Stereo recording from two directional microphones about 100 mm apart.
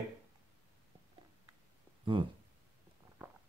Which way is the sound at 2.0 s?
55° right (ahead or behind).